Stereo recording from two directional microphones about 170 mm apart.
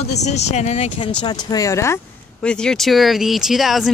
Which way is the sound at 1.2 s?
25° left (ahead or behind).